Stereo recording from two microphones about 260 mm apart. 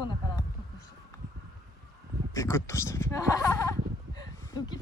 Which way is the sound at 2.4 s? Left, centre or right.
Centre.